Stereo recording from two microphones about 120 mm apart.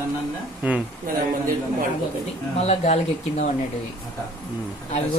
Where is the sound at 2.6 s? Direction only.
60° left (ahead or behind).